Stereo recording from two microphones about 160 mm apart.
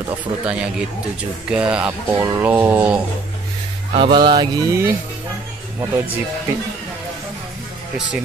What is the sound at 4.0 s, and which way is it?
Mantra, 30° right (ahead or behind).